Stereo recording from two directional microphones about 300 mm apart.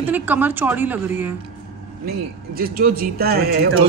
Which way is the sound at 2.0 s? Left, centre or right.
Right.